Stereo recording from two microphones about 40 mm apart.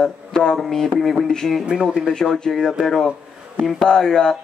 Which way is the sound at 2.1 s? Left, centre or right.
Centre.